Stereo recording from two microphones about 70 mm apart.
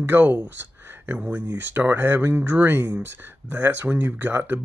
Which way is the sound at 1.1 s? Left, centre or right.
Centre.